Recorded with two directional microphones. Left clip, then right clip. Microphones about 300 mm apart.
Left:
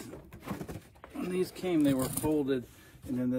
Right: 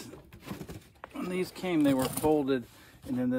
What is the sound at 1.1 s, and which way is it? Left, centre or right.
Speech, centre.